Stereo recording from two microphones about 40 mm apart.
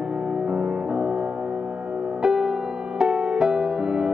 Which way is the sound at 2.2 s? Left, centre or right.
Centre.